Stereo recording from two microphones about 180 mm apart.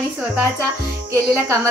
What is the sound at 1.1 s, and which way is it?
Music, 15° right (ahead or behind).